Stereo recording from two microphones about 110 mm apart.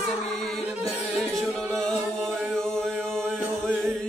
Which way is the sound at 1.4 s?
5° left (ahead or behind).